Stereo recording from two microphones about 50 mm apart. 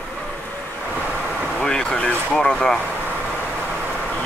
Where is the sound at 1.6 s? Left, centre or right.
Centre.